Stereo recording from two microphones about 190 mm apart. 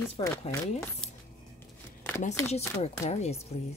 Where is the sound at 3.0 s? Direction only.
35° left (ahead or behind).